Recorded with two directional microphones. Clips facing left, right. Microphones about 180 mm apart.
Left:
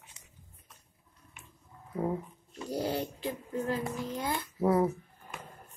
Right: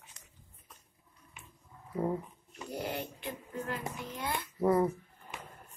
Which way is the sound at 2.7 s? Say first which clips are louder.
Left 5 dB; 35° left (ahead or behind).